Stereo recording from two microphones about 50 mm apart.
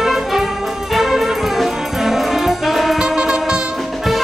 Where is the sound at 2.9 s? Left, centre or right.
Centre.